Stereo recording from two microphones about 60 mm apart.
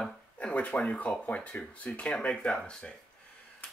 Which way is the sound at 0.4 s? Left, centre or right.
Left.